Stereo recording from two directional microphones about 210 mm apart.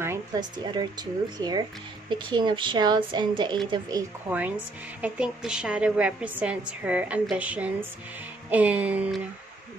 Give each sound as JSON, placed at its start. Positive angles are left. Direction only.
{"t": 0.0, "sound": "a woman's voice", "side_deg": -15}
{"t": 4.3, "sound": "a woman's voice", "side_deg": -5}
{"t": 8.5, "sound": "music", "side_deg": -5}